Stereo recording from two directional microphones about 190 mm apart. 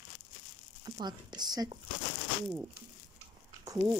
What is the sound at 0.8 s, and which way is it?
Speech, 20° right (ahead or behind).